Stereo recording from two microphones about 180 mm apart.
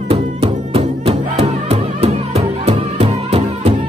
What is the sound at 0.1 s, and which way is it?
Music, 30° right (ahead or behind).